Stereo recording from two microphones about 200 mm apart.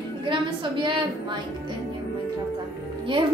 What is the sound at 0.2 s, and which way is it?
A woman's voice, 25° right (ahead or behind).